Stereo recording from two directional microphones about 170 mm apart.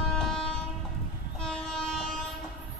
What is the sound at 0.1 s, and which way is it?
Train, 5° left (ahead or behind).